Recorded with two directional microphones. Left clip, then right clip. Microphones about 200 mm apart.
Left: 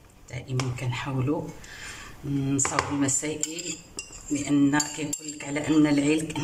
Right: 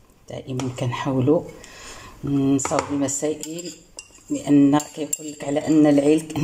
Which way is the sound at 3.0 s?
30° right (ahead or behind).